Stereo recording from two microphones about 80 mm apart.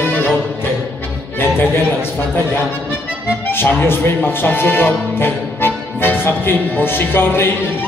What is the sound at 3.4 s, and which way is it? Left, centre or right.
Speech, left.